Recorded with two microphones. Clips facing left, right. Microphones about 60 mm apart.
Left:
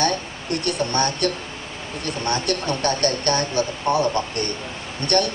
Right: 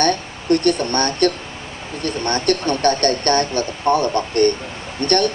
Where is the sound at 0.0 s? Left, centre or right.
Right.